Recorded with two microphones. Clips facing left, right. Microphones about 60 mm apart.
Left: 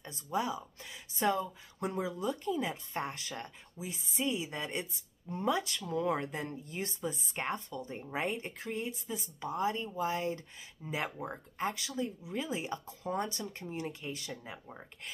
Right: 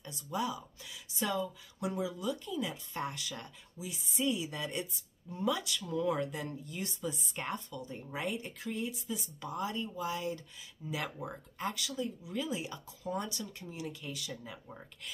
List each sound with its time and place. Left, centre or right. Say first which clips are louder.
0.0 s speech: left 2 dB; left